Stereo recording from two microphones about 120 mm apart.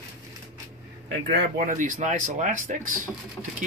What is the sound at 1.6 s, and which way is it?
Speech, 90° right.